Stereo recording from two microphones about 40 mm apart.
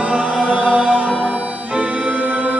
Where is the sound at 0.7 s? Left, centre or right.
Right.